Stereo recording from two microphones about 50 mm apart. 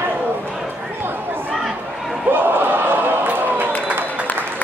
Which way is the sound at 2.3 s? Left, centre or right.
Right.